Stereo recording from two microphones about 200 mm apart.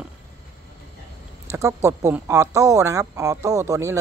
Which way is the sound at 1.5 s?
15° right (ahead or behind).